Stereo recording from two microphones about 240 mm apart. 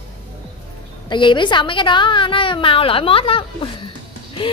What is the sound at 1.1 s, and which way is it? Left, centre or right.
Speech, centre.